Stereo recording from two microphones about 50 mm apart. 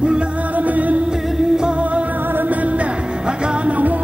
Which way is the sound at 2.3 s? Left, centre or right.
Right.